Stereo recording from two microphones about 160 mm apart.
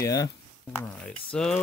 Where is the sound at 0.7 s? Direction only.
5° left (ahead or behind).